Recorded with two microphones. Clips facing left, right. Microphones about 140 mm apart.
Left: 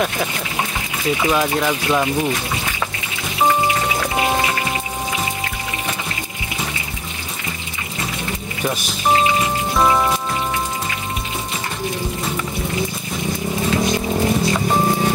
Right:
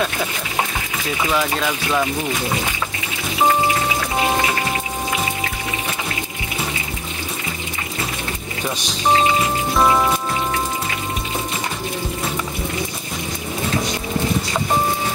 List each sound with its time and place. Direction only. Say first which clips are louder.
1.3 s speech: even; 15° left (ahead or behind)
8.6 s speech: left 1 dB; 5° left (ahead or behind)
9.8 s rain on surface: even; centre (ahead or behind)